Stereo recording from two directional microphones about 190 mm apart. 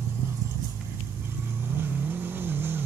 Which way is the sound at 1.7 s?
10° right (ahead or behind).